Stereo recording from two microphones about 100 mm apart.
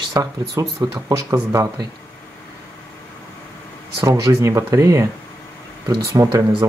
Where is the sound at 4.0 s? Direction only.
35° right (ahead or behind).